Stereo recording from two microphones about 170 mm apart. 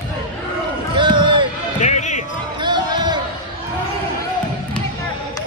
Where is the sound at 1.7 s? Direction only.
45° left (ahead or behind).